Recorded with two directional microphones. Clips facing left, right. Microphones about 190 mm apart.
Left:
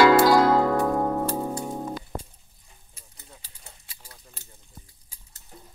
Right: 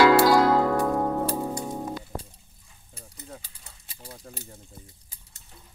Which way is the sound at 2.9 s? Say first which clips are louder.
Right 10 dB; 90° right.